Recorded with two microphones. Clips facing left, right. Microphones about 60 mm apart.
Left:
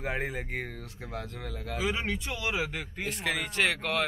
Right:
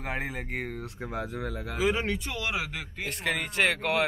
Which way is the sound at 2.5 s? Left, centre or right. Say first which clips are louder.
Left 1 dB; centre.